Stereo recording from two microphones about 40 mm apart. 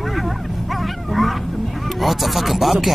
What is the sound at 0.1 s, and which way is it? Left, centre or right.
Bow-wow, centre.